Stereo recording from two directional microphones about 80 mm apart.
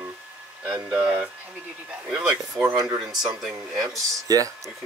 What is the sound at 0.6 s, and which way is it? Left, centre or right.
Speech, centre.